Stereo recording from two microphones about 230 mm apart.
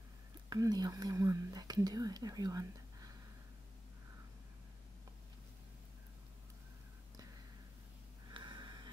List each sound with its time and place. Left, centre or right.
0.5 s speech: centre
8.3 s sniff: centre